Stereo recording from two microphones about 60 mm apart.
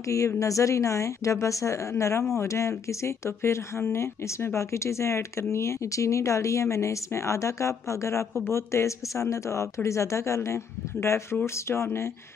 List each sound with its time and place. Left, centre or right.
0.0 s a woman's voice: left